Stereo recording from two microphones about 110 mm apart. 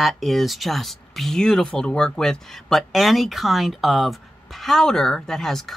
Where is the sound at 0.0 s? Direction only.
Centre (ahead or behind).